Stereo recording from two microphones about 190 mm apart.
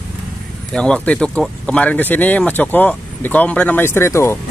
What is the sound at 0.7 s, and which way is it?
Speech, 5° left (ahead or behind).